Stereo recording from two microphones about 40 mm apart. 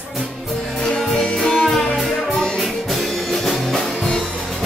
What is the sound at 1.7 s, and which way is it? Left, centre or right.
Music, centre.